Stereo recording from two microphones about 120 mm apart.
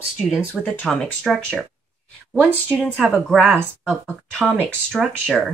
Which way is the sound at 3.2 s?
Centre (ahead or behind).